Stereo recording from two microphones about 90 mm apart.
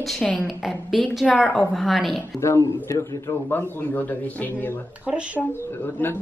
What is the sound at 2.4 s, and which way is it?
A man's voice, 35° left (ahead or behind).